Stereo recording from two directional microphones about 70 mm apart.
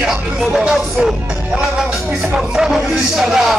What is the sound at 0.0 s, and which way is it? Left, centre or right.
Music, centre.